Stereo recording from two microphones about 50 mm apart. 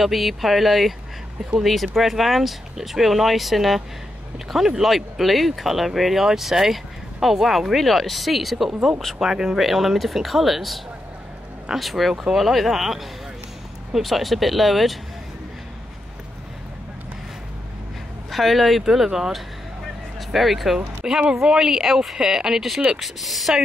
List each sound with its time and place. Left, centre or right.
0.0 s speech: centre
18.3 s speech: centre
21.0 s speech: centre